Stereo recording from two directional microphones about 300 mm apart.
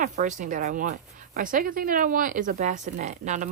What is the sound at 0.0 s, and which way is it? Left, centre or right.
A woman's voice, right.